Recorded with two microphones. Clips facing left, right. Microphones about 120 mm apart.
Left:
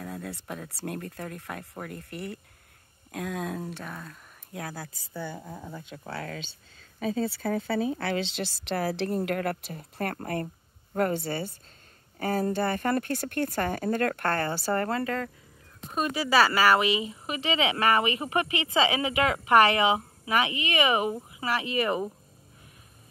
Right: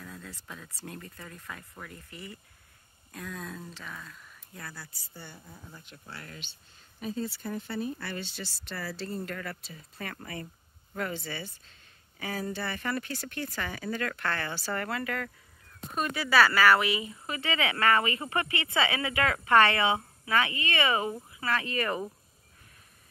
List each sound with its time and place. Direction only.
0.0 s a woman's voice: 60° left (ahead or behind)
3.7 s speech: 50° left (ahead or behind)
4.6 s speech: 90° left
7.4 s a woman's voice: 90° left; by 22.1 s 20° left (ahead or behind)